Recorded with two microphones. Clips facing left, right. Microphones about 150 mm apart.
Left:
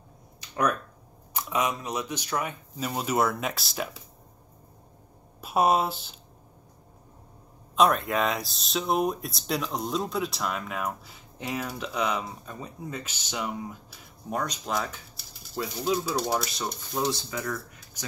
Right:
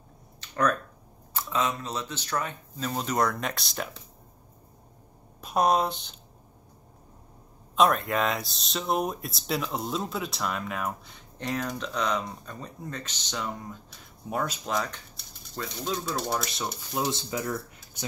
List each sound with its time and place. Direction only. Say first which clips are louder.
0.4 s a sound: right 1 dB; 10° left (ahead or behind)
1.3 s speech: left 1 dB; 15° left (ahead or behind)
5.4 s speech: left 1 dB; 5° left (ahead or behind)
7.7 s speech: even; centre (ahead or behind)
14.3 s speech: even; 5° right (ahead or behind)
17.1 s speech: right 1 dB; 25° right (ahead or behind)